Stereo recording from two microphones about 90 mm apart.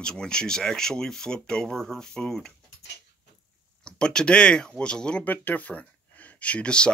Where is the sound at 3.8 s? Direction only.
10° left (ahead or behind).